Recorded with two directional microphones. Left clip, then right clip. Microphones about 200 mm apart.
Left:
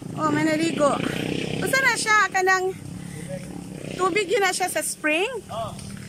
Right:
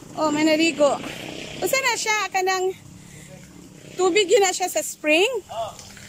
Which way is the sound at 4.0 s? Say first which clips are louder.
Right 4 dB; 15° right (ahead or behind).